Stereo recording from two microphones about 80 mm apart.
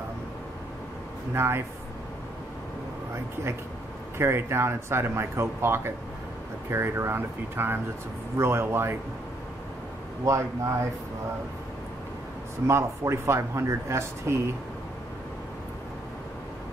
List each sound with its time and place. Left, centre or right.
1.3 s speech: right
4.2 s speech: right
10.2 s speech: right
12.6 s speech: right